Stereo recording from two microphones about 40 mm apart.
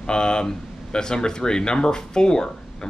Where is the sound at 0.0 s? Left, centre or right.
Left.